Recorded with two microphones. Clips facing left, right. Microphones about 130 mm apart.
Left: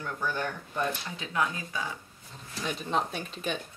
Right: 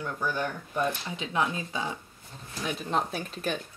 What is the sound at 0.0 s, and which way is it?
Speech, 10° right (ahead or behind).